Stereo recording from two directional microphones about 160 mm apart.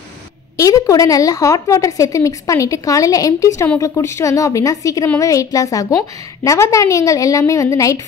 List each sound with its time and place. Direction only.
0.6 s speech: 20° left (ahead or behind)